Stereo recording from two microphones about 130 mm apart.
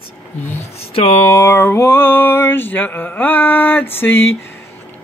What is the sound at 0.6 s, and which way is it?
Speech, 45° left (ahead or behind).